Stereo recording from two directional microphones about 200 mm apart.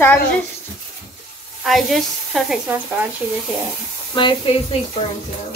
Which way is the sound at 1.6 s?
Centre (ahead or behind).